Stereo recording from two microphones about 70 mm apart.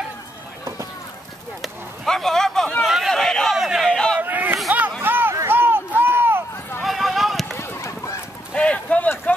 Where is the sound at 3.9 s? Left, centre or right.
Centre.